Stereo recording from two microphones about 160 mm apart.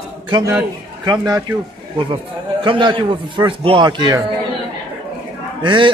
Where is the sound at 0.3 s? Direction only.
25° right (ahead or behind).